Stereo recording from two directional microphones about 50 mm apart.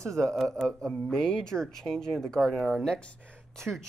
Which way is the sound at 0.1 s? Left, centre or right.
Centre.